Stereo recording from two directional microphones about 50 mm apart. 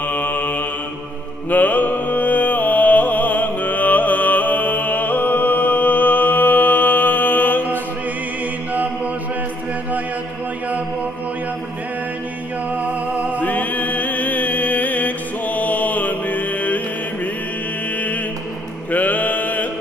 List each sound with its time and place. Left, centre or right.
0.0 s mantra: left
12.7 s music: right
13.4 s music: left
17.9 s mantra: left
18.9 s a sound: left